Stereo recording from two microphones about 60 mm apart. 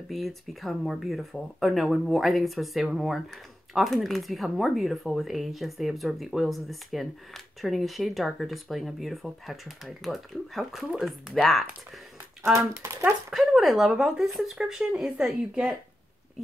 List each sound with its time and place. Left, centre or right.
0.1 s speech: centre
12.5 s speech: right
13.0 s speech: centre